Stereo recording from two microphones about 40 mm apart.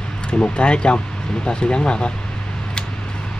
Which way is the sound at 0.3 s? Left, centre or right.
Left.